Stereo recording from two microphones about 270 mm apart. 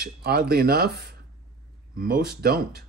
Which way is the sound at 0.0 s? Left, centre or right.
Right.